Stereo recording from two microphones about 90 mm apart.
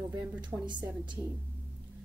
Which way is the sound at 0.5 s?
35° right (ahead or behind).